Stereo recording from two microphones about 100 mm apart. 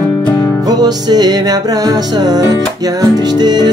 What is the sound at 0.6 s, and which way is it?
Music, 40° right (ahead or behind).